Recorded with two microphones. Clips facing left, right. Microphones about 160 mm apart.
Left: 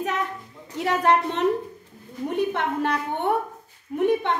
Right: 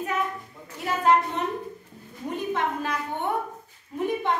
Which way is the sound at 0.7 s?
75° left (ahead or behind).